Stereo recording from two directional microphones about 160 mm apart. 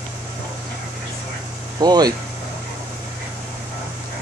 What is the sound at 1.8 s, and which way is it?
Speech, 25° right (ahead or behind).